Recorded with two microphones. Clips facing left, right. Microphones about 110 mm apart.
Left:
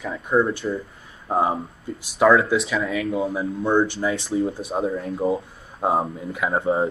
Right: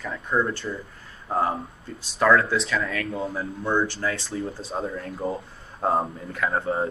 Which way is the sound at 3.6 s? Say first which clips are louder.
Left 4 dB; 20° left (ahead or behind).